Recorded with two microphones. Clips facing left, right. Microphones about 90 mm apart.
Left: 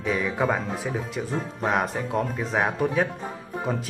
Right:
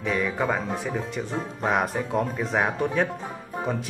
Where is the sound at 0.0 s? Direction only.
Centre (ahead or behind).